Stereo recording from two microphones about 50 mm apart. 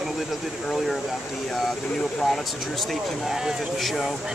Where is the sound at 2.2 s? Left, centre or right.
Centre.